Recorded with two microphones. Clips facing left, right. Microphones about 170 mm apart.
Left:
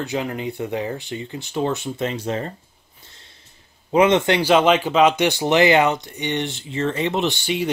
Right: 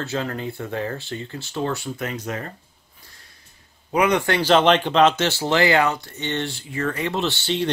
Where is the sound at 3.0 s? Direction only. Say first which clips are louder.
Left 2 dB; 25° left (ahead or behind).